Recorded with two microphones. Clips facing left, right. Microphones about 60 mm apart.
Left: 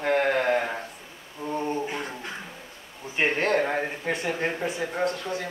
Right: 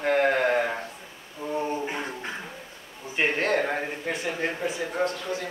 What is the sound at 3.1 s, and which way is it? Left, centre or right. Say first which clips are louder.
A man's voice: left 1 dB; centre.